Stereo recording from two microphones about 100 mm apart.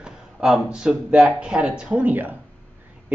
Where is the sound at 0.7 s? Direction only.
5° right (ahead or behind).